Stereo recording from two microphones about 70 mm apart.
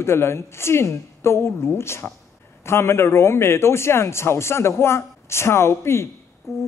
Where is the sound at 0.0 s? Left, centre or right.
Left.